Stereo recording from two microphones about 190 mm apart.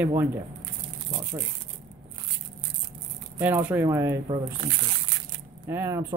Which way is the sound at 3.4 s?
10° right (ahead or behind).